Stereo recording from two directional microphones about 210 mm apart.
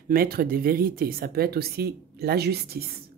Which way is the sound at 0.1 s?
45° right (ahead or behind).